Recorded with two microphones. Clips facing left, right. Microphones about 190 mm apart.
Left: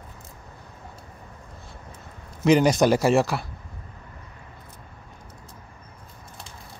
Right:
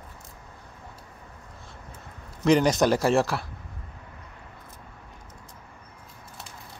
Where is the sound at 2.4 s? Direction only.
5° left (ahead or behind).